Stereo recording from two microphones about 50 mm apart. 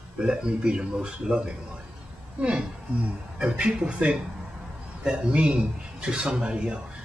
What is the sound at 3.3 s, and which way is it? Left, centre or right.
Speech, right.